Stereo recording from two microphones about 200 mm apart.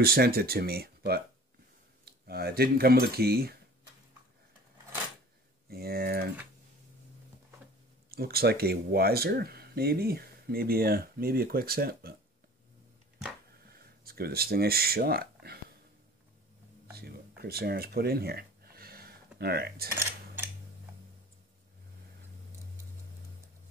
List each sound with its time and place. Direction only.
0.0 s speech: 50° right (ahead or behind)
5.7 s speech: 50° right (ahead or behind)
8.1 s speech: 50° right (ahead or behind)
13.7 s speech: 50° right (ahead or behind)
17.4 s a sound: 50° right (ahead or behind)